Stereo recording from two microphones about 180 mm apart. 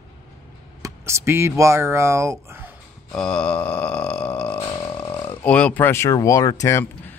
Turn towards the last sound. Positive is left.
turn(degrees=15)  # may be behind; listen again after turning